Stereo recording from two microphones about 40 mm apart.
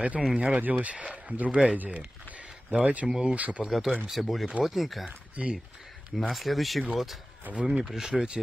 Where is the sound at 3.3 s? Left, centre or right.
Right.